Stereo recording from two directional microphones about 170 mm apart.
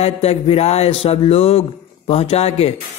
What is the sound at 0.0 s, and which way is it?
A man's voice, 35° left (ahead or behind).